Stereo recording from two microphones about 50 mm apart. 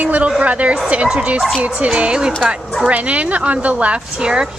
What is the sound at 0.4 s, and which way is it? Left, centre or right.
Speech, right.